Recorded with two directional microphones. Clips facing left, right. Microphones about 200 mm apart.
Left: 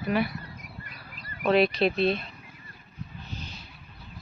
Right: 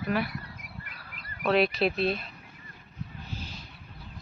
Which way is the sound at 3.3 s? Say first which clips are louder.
Even; 5° right (ahead or behind).